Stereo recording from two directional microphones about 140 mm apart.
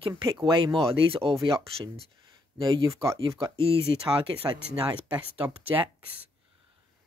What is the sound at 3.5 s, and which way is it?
Speech, 40° right (ahead or behind).